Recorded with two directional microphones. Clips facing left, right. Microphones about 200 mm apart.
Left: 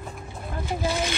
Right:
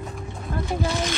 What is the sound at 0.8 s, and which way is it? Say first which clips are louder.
Vehicle: left 1 dB; centre (ahead or behind).